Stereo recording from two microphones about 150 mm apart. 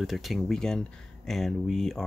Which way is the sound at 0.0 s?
Centre (ahead or behind).